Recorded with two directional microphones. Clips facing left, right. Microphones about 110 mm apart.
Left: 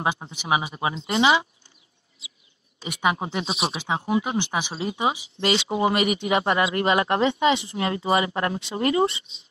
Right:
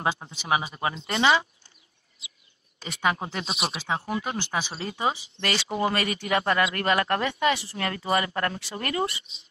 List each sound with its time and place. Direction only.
0.0 s speech: 15° left (ahead or behind)
2.8 s speech: 15° left (ahead or behind)
3.4 s speech: centre (ahead or behind)
3.7 s speech: 15° left (ahead or behind)